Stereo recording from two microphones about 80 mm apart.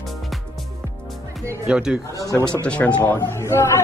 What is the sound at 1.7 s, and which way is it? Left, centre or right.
Speech, centre.